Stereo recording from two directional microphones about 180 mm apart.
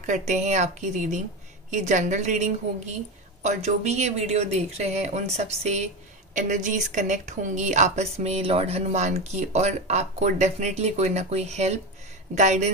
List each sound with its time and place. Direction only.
0.0 s a woman's voice: 40° right (ahead or behind)